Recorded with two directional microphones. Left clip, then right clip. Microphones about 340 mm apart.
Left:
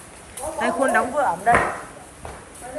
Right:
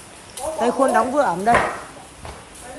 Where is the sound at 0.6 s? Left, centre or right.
Centre.